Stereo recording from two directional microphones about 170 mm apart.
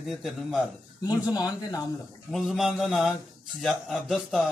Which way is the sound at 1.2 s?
20° left (ahead or behind).